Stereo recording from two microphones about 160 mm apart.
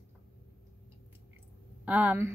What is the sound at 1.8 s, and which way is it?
Speech, 10° right (ahead or behind).